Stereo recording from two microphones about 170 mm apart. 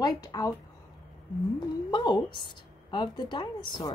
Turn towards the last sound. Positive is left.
turn(degrees=25)  # may be behind; listen again after turning